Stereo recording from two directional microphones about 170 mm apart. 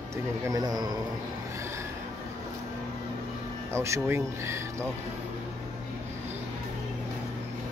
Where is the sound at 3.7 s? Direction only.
15° right (ahead or behind).